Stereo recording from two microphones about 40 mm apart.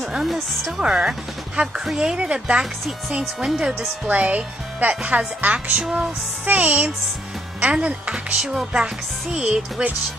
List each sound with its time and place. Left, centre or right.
0.2 s speech: centre
0.8 s speech: centre
1.6 s speech: right
2.0 s speech: centre
3.1 s speech: centre
4.1 s speech: right
5.8 s speech: centre
6.4 s speech: right